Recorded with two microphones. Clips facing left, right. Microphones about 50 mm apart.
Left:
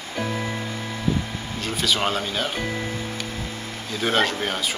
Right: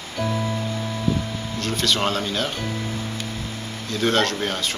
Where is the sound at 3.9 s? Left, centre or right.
Centre.